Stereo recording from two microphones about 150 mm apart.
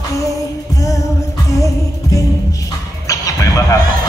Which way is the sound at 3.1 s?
20° left (ahead or behind).